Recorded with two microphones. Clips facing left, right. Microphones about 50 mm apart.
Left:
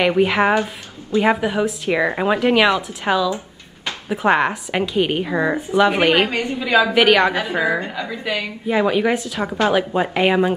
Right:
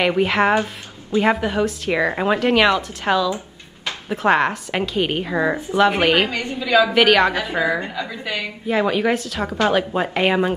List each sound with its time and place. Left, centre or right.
0.0 s a woman's voice: centre
6.6 s a woman's voice: centre
6.9 s a woman's voice: centre